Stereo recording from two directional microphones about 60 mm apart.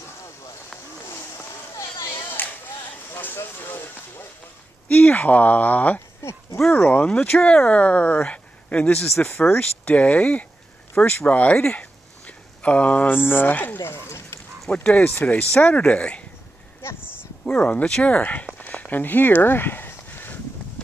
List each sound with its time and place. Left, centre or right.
2.0 s a sound: left
3.5 s speech: left
5.9 s a sound: left
6.7 s speech: left
9.2 s speech: left
9.6 s speech: left
11.5 s a sound: centre
13.1 s speech: left
13.8 s bow-wow: left
15.0 s speech: left
15.7 s speech: centre
17.5 s speech: centre
18.0 s speech: left
18.7 s a sound: left